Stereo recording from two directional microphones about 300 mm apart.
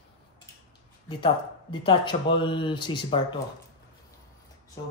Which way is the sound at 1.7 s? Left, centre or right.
Centre.